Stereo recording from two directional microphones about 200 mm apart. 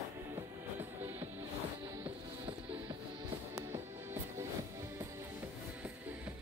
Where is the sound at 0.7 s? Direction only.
10° right (ahead or behind).